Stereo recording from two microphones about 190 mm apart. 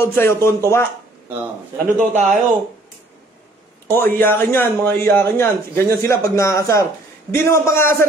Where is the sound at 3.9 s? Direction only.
10° left (ahead or behind).